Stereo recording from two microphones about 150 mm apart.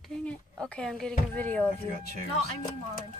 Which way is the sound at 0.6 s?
5° left (ahead or behind).